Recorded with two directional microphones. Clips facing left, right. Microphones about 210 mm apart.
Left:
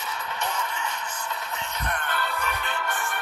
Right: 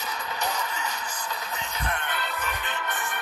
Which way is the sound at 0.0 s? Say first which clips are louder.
Even; 35° right (ahead or behind).